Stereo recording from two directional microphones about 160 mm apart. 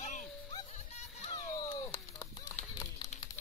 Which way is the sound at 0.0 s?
50° left (ahead or behind).